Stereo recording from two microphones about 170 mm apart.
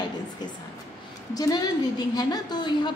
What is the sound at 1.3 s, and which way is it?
A woman's voice, 20° left (ahead or behind).